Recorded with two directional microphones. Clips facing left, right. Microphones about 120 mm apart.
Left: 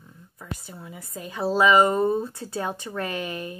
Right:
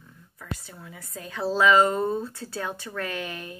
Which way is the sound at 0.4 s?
15° left (ahead or behind).